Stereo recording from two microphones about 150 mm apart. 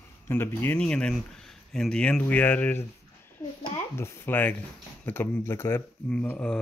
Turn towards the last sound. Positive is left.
turn(degrees=10)  # may be behind; listen again after turning